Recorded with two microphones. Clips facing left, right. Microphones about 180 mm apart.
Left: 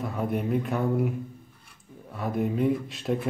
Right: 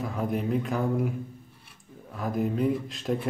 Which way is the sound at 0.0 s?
Centre (ahead or behind).